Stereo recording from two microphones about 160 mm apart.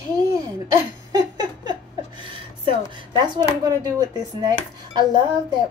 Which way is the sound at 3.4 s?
25° right (ahead or behind).